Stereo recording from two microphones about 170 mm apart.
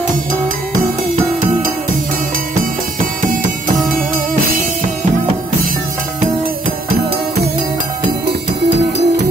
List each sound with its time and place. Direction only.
8.6 s music: 80° right